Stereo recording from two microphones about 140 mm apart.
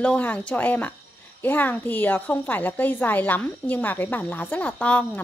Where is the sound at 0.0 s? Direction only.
10° left (ahead or behind).